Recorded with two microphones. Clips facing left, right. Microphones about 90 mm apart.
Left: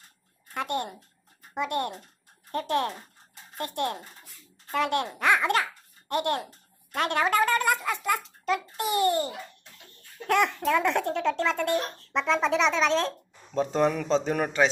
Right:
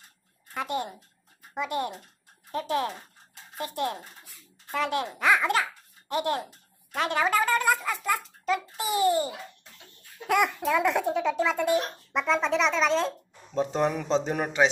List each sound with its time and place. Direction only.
0.6 s a child's voice: centre (ahead or behind)